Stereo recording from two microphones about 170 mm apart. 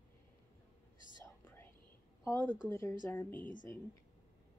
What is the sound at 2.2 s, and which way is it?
Speech, 15° left (ahead or behind).